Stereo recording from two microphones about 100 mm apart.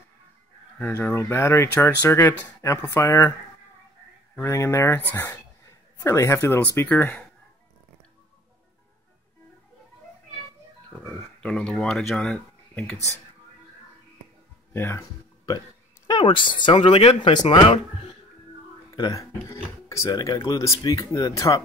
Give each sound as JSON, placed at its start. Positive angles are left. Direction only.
{"t": 0.7, "sound": "speech", "side_deg": 20}
{"t": 4.4, "sound": "speech", "side_deg": 30}
{"t": 5.9, "sound": "speech", "side_deg": 30}
{"t": 11.4, "sound": "speech", "side_deg": 10}
{"t": 14.7, "sound": "speech", "side_deg": 25}
{"t": 16.2, "sound": "speech", "side_deg": 60}
{"t": 19.4, "sound": "speech", "side_deg": 30}
{"t": 20.2, "sound": "speech", "side_deg": 45}